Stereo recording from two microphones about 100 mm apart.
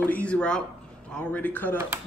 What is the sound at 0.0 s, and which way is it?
Speech, 15° left (ahead or behind).